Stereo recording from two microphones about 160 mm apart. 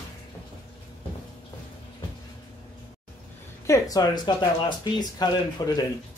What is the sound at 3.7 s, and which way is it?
Speech, 25° left (ahead or behind).